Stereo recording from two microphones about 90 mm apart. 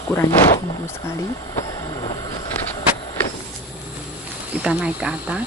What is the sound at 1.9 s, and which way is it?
Vehicle, 65° left (ahead or behind).